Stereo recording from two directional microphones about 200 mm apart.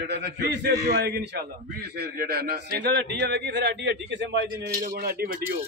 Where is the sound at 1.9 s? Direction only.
55° right (ahead or behind).